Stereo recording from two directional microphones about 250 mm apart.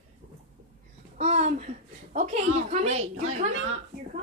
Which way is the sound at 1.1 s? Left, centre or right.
Right.